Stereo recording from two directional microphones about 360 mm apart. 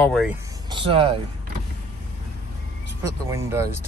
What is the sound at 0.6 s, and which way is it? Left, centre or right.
Speech, centre.